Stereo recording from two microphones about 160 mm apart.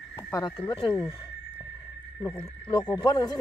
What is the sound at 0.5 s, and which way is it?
Speech, 35° left (ahead or behind).